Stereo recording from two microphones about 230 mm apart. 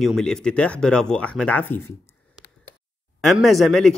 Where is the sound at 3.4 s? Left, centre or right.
Centre.